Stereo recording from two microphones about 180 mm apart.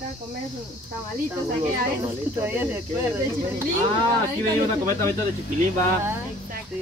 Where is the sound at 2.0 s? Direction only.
10° right (ahead or behind).